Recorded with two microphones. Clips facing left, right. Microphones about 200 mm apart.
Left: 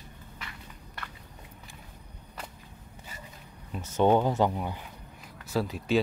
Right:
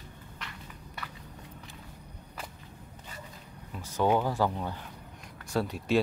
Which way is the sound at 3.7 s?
25° left (ahead or behind).